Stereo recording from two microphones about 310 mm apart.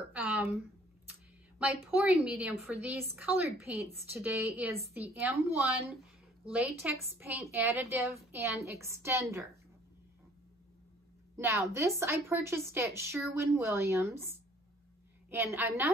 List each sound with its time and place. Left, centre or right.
0.1 s a sound: centre
1.6 s a woman's voice: centre
11.3 s a woman's voice: centre